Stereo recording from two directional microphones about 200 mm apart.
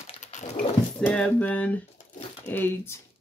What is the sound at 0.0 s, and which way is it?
Dog, 35° left (ahead or behind).